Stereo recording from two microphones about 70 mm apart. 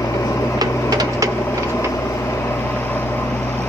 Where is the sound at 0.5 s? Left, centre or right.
Right.